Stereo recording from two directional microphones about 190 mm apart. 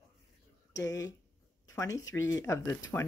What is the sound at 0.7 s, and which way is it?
Speech, 20° left (ahead or behind).